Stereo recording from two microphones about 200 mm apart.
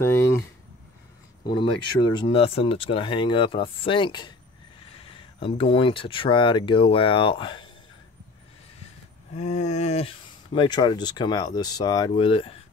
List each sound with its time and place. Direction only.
1.5 s speech: 20° left (ahead or behind)
9.3 s speech: 35° left (ahead or behind)